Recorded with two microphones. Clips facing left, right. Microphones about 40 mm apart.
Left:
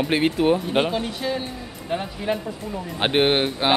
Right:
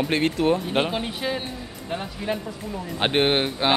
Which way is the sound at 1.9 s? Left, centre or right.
Centre.